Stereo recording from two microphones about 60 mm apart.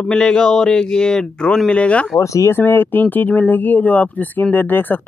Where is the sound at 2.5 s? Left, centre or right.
Left.